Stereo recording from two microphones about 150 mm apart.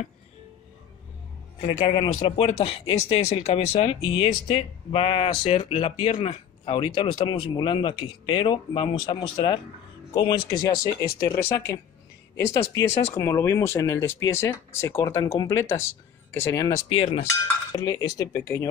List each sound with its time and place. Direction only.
1.6 s speech: 35° left (ahead or behind)
16.9 s speech: 40° left (ahead or behind)
17.7 s speech: 25° left (ahead or behind)